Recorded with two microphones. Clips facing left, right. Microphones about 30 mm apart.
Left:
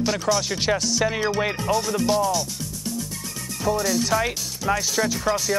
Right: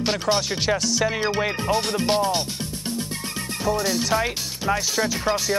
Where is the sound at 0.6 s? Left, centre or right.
Centre.